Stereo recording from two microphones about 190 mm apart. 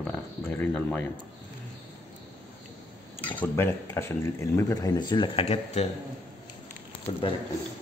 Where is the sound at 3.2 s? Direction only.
10° left (ahead or behind); by 5.9 s 35° left (ahead or behind).